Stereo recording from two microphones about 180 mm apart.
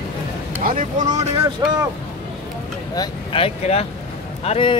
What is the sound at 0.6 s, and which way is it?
Speech, 50° right (ahead or behind).